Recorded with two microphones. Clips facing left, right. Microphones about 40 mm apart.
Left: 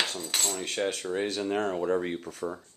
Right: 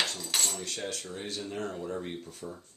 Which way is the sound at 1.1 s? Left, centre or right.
Left.